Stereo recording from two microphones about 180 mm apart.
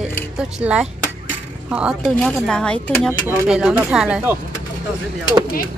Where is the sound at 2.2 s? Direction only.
5° left (ahead or behind).